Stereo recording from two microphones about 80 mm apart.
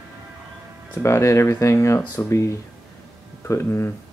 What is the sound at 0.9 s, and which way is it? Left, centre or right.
Speech, left.